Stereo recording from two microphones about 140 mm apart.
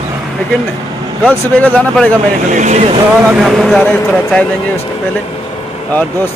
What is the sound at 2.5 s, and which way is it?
Speech, 60° right (ahead or behind).